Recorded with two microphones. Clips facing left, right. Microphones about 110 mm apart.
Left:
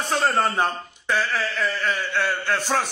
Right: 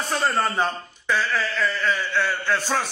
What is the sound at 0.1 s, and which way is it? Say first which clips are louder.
A man's voice: left 2 dB; 25° left (ahead or behind).